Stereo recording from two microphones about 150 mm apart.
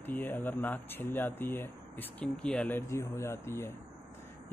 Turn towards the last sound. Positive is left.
turn(degrees=15)  # may be behind; listen again after turning